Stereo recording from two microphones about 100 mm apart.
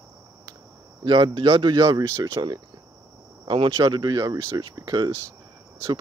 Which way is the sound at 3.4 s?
55° right (ahead or behind).